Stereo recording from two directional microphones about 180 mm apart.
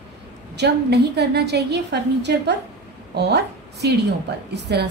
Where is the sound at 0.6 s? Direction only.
70° right (ahead or behind).